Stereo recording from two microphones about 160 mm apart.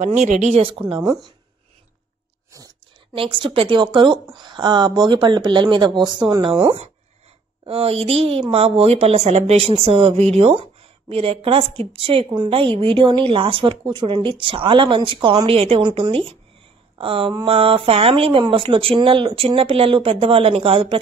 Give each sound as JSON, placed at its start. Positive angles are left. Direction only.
{"t": 0.0, "sound": "a woman's voice", "side_deg": -50}
{"t": 2.5, "sound": "whispering", "side_deg": -20}
{"t": 3.2, "sound": "a woman's voice", "side_deg": -35}